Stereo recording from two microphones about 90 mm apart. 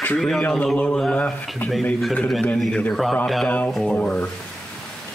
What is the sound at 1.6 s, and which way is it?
A man's voice, 20° left (ahead or behind).